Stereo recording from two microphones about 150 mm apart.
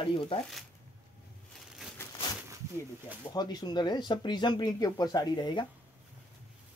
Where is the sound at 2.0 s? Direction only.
15° left (ahead or behind).